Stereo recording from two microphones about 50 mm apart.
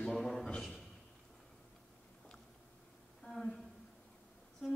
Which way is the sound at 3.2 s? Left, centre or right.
Centre.